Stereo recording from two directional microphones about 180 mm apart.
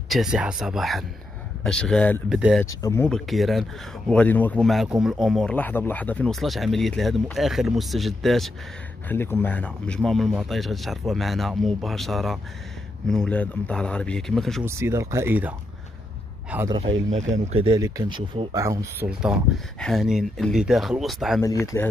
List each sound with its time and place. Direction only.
0.1 s speech: 5° right (ahead or behind)
2.2 s speech: 5° right (ahead or behind)
2.8 s speech: 15° left (ahead or behind)
3.1 s speech: centre (ahead or behind)
9.1 s speech: 10° left (ahead or behind)
14.6 s speech: 15° right (ahead or behind)
17.1 s speech: 40° right (ahead or behind)
17.6 s speech: 20° right (ahead or behind); by 21.4 s centre (ahead or behind)
21.4 s speech: 15° left (ahead or behind)